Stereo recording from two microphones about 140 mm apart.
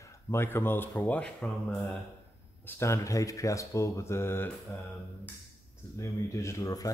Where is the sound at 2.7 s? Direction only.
20° left (ahead or behind).